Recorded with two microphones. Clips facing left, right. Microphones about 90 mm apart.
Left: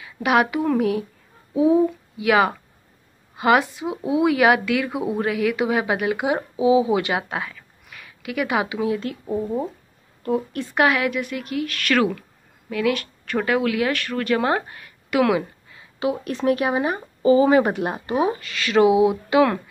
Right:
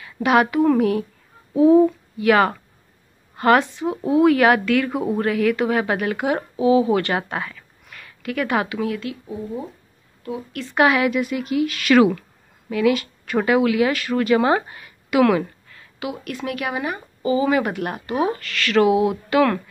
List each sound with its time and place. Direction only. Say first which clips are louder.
0.0 s a woman's voice: right 2 dB; 5° left (ahead or behind); by 9.0 s 20° left (ahead or behind)
9.0 s speech: left 4 dB; 45° left (ahead or behind)
10.7 s a woman's voice: right 3 dB; centre (ahead or behind)
16.0 s speech: left 5 dB; 30° left (ahead or behind)